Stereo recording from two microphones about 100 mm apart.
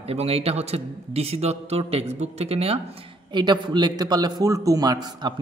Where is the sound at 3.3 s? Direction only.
50° right (ahead or behind).